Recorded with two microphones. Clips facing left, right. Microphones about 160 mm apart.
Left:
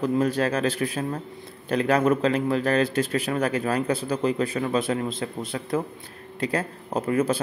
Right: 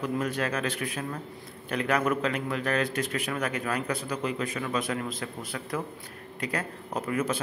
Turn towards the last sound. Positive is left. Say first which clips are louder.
# left 6 dB
turn(degrees=30)  # may be behind; listen again after turning